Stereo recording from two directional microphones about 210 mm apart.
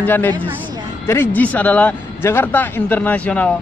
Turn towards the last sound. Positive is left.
turn(degrees=5)  # may be behind; listen again after turning